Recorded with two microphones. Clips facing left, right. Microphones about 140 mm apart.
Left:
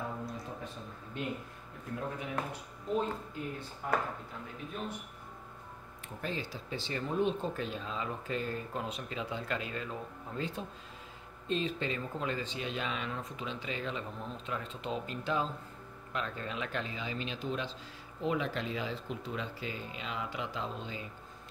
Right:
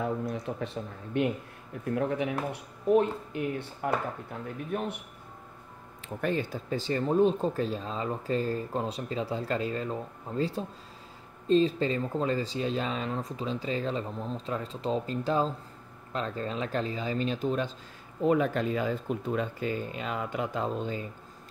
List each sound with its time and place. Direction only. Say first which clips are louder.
0.0 s speech: right 8 dB; 75° right (ahead or behind)
6.2 s speech: right 9 dB; 55° right (ahead or behind)